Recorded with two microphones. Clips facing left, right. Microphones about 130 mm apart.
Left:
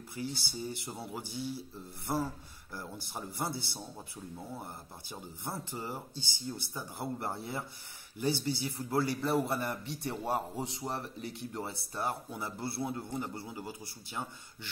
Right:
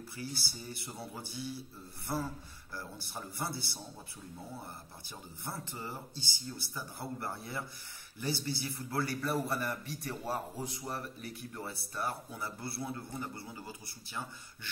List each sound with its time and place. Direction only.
0.2 s a man's voice: 15° left (ahead or behind)
2.7 s a man's voice: 15° left (ahead or behind)
5.4 s a man's voice: 15° left (ahead or behind)
12.1 s a man's voice: 15° left (ahead or behind)